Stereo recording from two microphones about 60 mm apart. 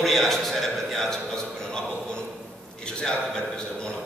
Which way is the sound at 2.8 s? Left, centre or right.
Centre.